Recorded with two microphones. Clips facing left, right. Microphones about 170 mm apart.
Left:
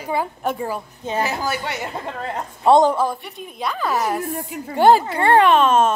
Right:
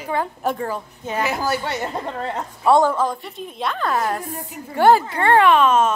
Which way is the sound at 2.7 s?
20° left (ahead or behind).